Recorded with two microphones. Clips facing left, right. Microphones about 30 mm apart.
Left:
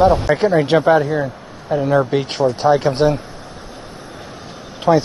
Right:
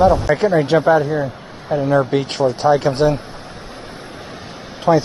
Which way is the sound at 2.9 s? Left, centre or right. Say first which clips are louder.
Even; left.